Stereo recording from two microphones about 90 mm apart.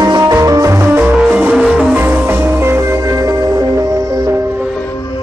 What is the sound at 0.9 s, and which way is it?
Music, 20° right (ahead or behind).